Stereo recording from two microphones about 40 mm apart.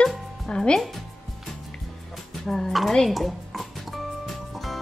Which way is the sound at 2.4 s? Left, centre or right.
Centre.